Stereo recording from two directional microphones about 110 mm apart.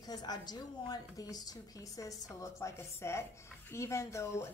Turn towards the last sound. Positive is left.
turn(degrees=25)  # may be behind; listen again after turning